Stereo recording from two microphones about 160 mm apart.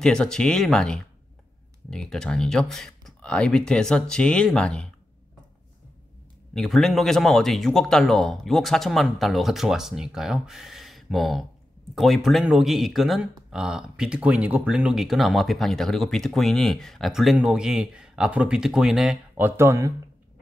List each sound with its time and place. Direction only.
0.0 s speech: 5° left (ahead or behind)
6.5 s speech: centre (ahead or behind)
19.4 s speech: 15° right (ahead or behind)